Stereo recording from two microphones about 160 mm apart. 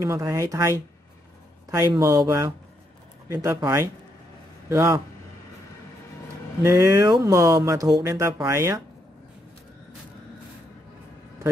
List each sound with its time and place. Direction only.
0.0 s speech: 20° right (ahead or behind)
6.6 s speech: 20° right (ahead or behind)